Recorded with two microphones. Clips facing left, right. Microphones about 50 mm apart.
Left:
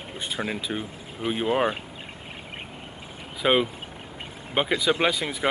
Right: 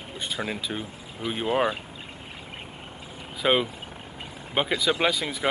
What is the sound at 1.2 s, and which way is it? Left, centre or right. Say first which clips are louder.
Speech: left 3 dB; left.